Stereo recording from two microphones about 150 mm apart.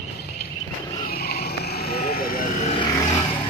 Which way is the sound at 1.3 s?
90° left.